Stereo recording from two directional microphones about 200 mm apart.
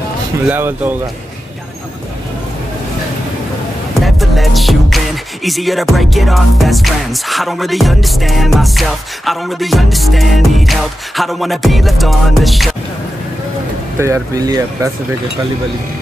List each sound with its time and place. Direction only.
0.5 s speech: 10° right (ahead or behind)
4.0 s music: centre (ahead or behind)
13.9 s speech: 15° right (ahead or behind)